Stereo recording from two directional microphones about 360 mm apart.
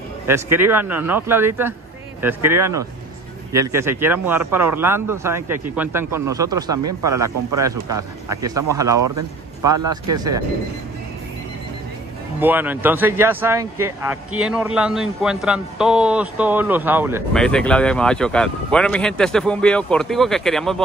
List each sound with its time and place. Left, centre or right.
0.3 s a man's voice: centre
8.9 s speech: right
10.1 s a man's voice: centre
12.4 s a man's voice: centre